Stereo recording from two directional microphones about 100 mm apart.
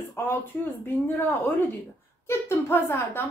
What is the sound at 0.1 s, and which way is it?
A woman's voice, 25° left (ahead or behind).